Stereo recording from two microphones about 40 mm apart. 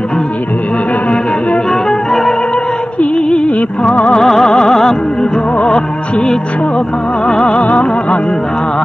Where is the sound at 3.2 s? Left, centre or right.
Centre.